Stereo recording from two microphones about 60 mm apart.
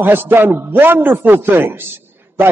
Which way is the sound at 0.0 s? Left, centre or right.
Right.